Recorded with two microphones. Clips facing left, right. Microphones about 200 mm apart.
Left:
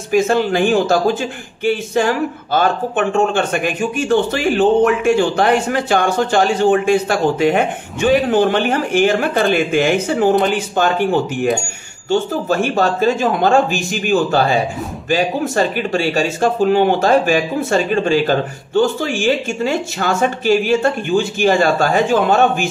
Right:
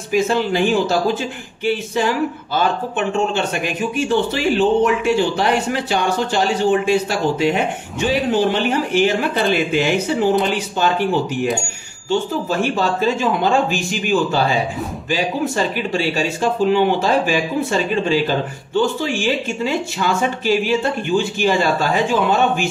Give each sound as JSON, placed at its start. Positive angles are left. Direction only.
{"t": 0.1, "sound": "speech", "side_deg": 50}
{"t": 12.1, "sound": "speech", "side_deg": 45}